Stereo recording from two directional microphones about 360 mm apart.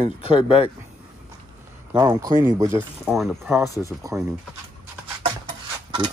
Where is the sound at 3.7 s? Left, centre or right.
Centre.